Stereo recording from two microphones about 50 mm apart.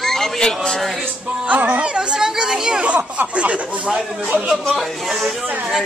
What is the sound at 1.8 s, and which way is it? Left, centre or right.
Speech, centre.